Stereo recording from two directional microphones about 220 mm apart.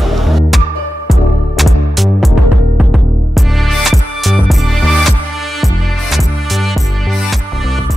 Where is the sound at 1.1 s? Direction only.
Centre (ahead or behind).